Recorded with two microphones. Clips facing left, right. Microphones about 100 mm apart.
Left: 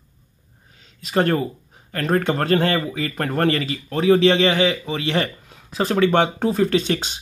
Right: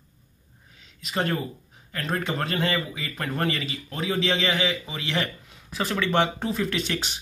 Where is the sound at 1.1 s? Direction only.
60° left (ahead or behind).